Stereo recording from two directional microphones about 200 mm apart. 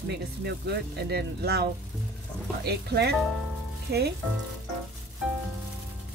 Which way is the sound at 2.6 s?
55° right (ahead or behind).